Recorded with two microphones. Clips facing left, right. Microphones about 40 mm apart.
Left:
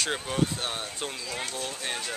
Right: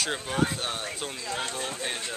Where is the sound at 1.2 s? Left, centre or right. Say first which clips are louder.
Right 2 dB; right.